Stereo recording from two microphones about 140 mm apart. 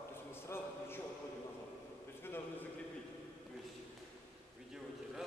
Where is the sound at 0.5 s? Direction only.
15° left (ahead or behind).